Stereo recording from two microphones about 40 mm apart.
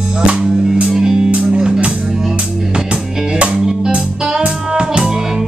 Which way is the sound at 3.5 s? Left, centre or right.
Centre.